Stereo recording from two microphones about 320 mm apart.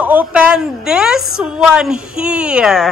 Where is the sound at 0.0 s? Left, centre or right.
Centre.